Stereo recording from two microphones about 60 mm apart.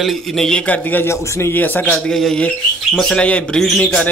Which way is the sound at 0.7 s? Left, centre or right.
Left.